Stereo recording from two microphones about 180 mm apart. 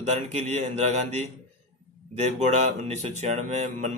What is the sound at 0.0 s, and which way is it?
Speech, 35° right (ahead or behind).